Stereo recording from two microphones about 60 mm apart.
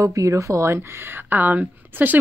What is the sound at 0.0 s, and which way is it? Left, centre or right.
Speech, right.